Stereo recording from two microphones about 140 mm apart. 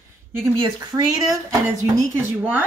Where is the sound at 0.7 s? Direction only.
25° right (ahead or behind).